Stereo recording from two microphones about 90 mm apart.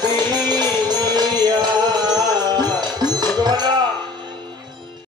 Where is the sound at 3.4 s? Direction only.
50° right (ahead or behind).